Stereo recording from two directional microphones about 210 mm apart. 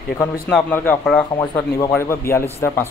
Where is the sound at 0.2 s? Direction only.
5° left (ahead or behind).